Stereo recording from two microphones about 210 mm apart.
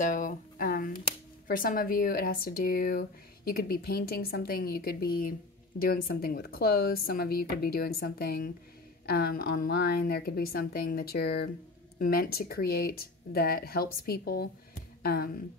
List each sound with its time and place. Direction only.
0.0 s speech: 40° left (ahead or behind)